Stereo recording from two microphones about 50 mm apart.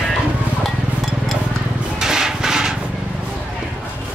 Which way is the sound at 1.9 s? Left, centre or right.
Centre.